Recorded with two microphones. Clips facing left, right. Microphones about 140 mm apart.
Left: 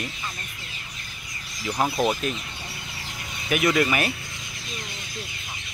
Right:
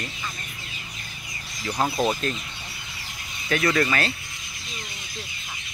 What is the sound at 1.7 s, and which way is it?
Speech, centre (ahead or behind).